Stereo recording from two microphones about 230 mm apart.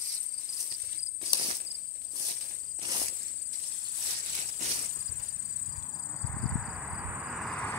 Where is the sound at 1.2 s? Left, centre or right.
Right.